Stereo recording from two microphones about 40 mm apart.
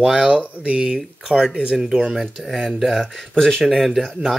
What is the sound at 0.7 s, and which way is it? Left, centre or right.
Speech, right.